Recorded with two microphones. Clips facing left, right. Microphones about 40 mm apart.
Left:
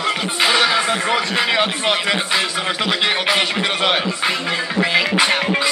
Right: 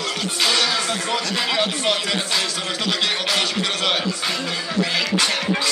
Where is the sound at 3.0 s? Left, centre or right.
Left.